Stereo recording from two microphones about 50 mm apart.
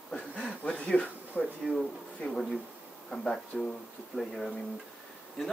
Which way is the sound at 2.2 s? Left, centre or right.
Left.